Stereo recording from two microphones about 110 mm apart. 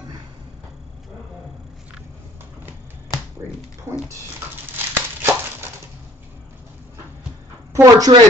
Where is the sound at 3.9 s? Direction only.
25° right (ahead or behind).